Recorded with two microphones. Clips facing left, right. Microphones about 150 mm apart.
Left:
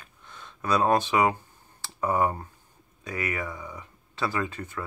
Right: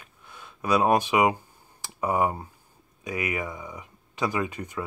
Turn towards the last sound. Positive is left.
turn(degrees=-15)  # may be behind; listen again after turning